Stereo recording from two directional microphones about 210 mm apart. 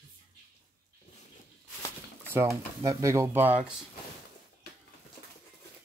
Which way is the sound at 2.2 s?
10° right (ahead or behind).